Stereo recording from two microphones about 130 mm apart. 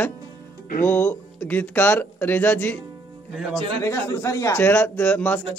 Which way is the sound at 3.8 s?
25° left (ahead or behind).